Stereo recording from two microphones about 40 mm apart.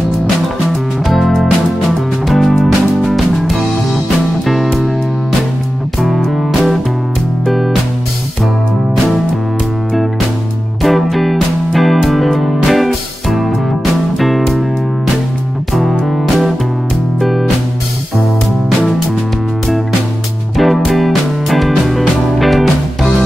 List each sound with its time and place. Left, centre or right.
1.0 s music: centre
5.9 s music: centre
10.8 s music: centre
15.7 s music: centre
20.5 s music: centre